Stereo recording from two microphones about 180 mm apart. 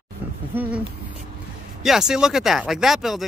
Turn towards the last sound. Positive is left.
turn(degrees=0)  # may be behind; listen again after turning